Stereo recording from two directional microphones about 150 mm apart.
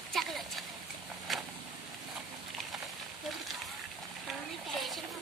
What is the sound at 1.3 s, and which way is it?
Vehicle, centre (ahead or behind).